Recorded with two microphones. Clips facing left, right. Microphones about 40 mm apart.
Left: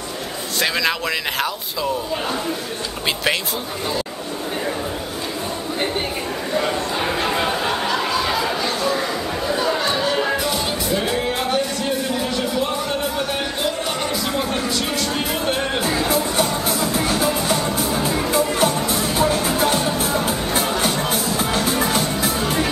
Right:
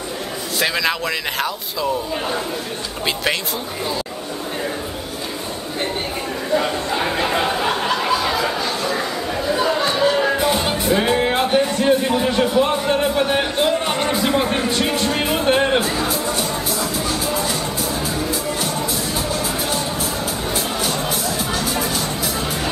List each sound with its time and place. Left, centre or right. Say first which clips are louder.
0.6 s speech: even; centre
6.5 s a sound: right 2 dB; centre
10.4 s music: right 4 dB; right
16.1 s music: left 2 dB; left